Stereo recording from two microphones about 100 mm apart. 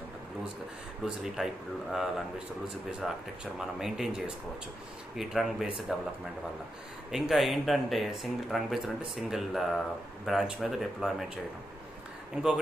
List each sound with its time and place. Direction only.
1.0 s speech: 5° right (ahead or behind)
7.1 s speech: 5° right (ahead or behind)